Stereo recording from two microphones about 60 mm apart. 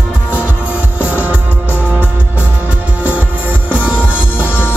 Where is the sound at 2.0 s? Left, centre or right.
Right.